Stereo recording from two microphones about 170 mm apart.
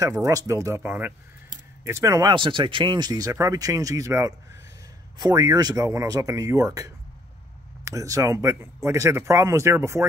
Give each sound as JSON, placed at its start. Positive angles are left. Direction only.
{"t": 0.2, "sound": "speech", "side_deg": -20}